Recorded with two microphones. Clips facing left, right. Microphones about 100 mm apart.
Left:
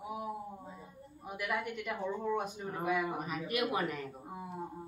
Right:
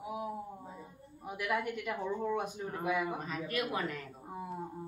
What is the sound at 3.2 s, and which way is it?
Speech, 15° left (ahead or behind).